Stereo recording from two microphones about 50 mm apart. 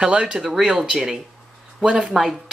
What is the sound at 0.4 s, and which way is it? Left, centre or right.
Speech, centre.